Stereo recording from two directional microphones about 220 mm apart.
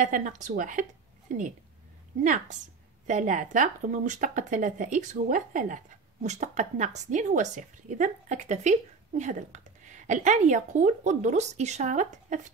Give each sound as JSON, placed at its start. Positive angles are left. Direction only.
{"t": 0.0, "sound": "speech", "side_deg": -35}
{"t": 2.2, "sound": "speech", "side_deg": -35}